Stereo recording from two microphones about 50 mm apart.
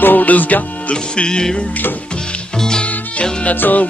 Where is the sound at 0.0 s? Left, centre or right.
Left.